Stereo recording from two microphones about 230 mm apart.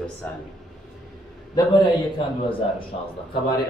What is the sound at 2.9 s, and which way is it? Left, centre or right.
Speech, left.